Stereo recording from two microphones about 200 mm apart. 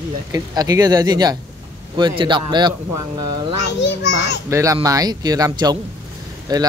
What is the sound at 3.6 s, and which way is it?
Speech, 60° left (ahead or behind).